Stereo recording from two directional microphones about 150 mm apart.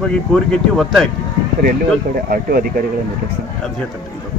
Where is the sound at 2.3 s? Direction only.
85° right.